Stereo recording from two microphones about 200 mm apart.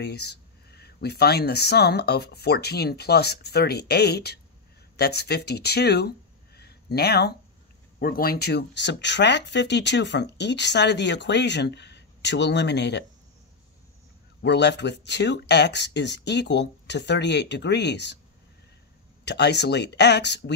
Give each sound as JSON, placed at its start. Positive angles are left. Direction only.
{"t": 0.0, "sound": "speech", "side_deg": 55}
{"t": 14.4, "sound": "speech", "side_deg": 60}
{"t": 19.2, "sound": "speech", "side_deg": 60}